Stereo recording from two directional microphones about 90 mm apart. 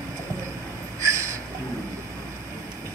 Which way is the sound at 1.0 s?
35° right (ahead or behind).